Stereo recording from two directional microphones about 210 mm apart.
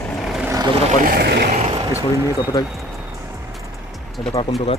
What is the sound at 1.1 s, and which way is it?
Vehicle, 50° right (ahead or behind).